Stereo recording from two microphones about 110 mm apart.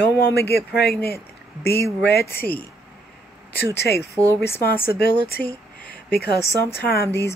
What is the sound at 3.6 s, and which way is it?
Speech, 30° right (ahead or behind).